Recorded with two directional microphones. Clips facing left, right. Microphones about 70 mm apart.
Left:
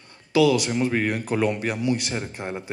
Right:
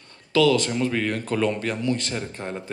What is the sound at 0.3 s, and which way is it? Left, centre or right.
Speech, centre.